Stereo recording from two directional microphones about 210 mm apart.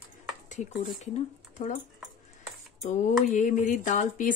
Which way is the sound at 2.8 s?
35° left (ahead or behind).